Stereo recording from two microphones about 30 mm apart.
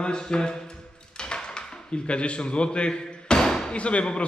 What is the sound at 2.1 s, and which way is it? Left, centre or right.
Speech, left.